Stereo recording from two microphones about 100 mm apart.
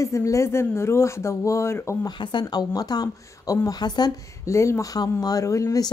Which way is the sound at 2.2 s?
50° left (ahead or behind).